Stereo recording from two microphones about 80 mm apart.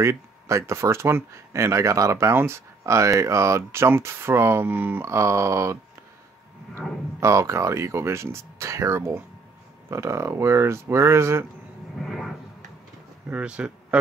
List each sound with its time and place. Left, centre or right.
0.0 s speech: right
5.0 s speech: right
7.2 s speech: right
12.0 s a sound: centre
13.3 s speech: centre